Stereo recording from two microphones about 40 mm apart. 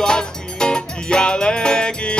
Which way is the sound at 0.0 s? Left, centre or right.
Left.